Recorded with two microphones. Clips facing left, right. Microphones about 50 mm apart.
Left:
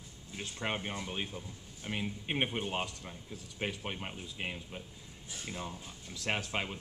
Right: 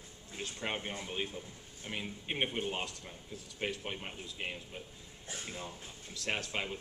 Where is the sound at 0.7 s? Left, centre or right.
Centre.